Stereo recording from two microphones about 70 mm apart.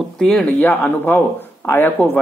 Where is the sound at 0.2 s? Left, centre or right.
Centre.